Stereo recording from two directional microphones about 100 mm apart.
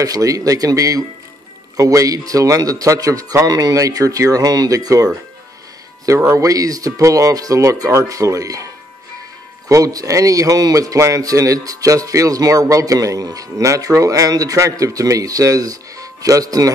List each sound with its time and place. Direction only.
0.0 s speech: 35° right (ahead or behind)
9.7 s speech: 35° right (ahead or behind)